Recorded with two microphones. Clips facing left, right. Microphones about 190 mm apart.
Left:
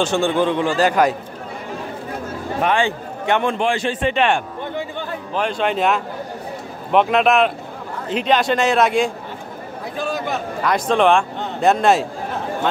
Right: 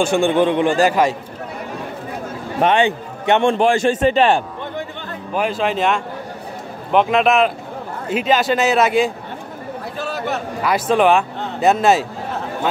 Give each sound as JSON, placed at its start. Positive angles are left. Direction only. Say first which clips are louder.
{"t": 0.0, "sound": "speech", "louder": "right 3 dB", "side_deg": -15}
{"t": 0.7, "sound": "a man's voice", "louder": "right 1 dB", "side_deg": -5}
{"t": 2.6, "sound": "a man's voice", "louder": "right 4 dB", "side_deg": -25}
{"t": 3.5, "sound": "a man's voice", "louder": "right 5 dB", "side_deg": -45}
{"t": 5.3, "sound": "a man's voice", "louder": "right 1 dB", "side_deg": -5}